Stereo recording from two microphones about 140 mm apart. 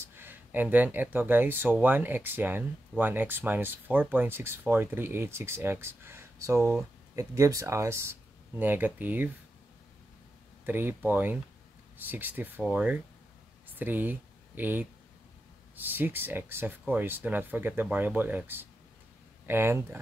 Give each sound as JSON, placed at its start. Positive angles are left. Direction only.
{"t": 0.0, "sound": "speech", "side_deg": -15}
{"t": 10.6, "sound": "speech", "side_deg": -15}